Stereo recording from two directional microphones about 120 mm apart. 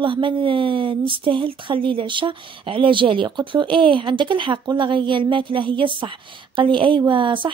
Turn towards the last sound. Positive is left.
turn(degrees=-45)  # may be behind; listen again after turning